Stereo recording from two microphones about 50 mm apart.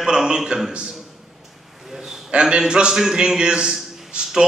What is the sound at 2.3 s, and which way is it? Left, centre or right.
A man's voice, centre.